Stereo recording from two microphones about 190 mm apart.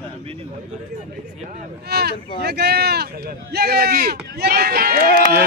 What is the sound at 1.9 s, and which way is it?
Speech, 55° right (ahead or behind).